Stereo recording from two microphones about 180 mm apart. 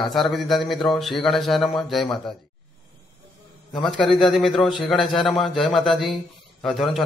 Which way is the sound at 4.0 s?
5° left (ahead or behind).